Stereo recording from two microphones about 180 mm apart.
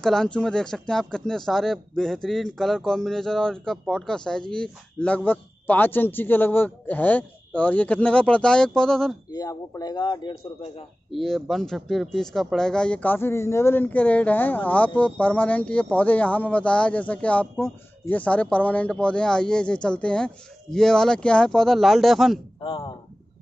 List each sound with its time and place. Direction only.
0.0 s speech: 5° left (ahead or behind)
9.3 s speech: 20° left (ahead or behind)
11.1 s speech: centre (ahead or behind)
22.6 s speech: 30° left (ahead or behind)